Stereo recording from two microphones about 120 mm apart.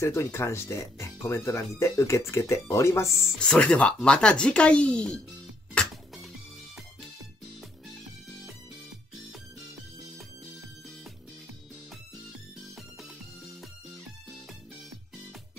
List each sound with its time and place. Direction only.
0.0 s speech: 20° left (ahead or behind)
3.3 s speech: 10° left (ahead or behind)
5.8 s music: 10° left (ahead or behind)